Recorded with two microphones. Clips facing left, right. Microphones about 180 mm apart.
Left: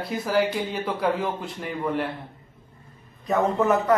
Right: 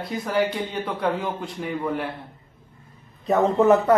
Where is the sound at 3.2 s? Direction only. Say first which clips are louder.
Right 4 dB; 25° right (ahead or behind).